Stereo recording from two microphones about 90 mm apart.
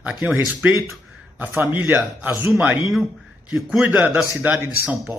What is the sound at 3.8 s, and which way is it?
Speech, 20° right (ahead or behind).